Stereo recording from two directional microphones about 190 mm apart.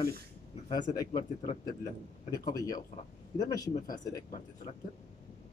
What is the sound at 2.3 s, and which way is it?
Speech, 20° left (ahead or behind).